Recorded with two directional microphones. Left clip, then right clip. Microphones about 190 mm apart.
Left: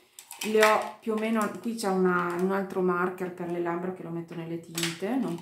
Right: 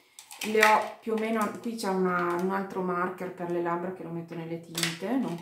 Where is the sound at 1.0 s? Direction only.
35° left (ahead or behind).